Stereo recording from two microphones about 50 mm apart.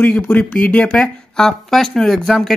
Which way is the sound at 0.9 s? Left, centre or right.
Centre.